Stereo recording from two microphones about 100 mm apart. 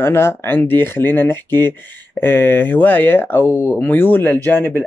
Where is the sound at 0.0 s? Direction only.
25° left (ahead or behind).